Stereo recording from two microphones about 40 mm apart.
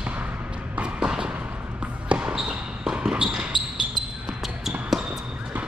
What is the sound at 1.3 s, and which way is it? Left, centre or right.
Basketball bounce, right.